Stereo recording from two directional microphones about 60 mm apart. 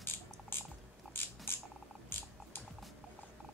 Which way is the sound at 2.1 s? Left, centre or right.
Left.